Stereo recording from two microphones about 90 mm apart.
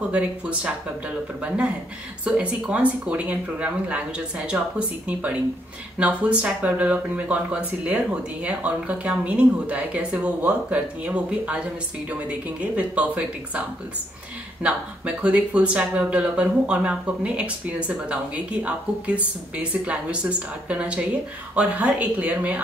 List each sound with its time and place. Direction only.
0.1 s speech: 15° right (ahead or behind)